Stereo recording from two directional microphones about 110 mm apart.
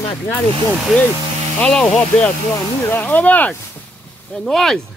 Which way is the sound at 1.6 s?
10° left (ahead or behind).